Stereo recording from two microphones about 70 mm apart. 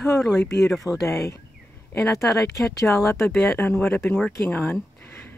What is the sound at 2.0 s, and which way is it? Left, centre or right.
Speech, left.